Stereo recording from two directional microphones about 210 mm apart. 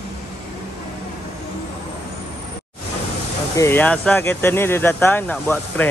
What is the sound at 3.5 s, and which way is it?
Speech, 10° left (ahead or behind).